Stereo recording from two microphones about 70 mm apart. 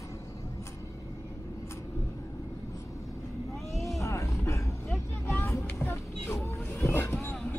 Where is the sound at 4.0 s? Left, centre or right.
Left.